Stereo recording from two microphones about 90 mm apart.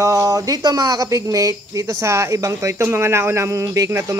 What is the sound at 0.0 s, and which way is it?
Speech, 40° right (ahead or behind).